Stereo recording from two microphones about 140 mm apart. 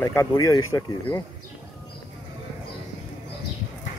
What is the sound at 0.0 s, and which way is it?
Speech, 20° left (ahead or behind).